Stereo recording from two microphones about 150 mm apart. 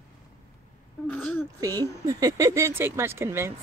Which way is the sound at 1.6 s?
25° right (ahead or behind).